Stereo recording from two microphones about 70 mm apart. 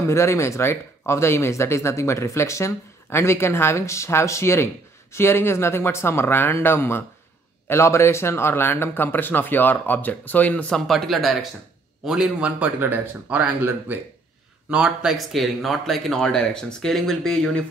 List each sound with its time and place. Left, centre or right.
0.0 s speech: left; by 10.8 s centre
10.9 s speech: centre
12.0 s a man's voice: centre
12.4 s speech: centre
14.7 s speech: centre
15.1 s speech: centre